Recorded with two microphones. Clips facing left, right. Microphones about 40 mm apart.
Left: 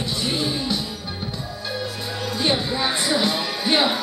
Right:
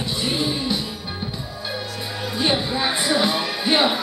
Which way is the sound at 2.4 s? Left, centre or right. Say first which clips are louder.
Right 1 dB; centre.